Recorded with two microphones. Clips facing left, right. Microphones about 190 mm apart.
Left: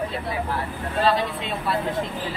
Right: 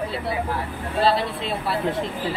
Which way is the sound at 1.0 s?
30° right (ahead or behind).